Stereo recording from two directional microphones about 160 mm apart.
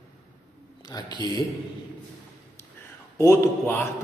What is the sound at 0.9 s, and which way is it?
Speech, 20° left (ahead or behind).